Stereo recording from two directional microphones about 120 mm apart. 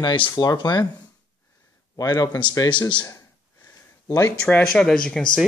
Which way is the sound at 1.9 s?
30° left (ahead or behind).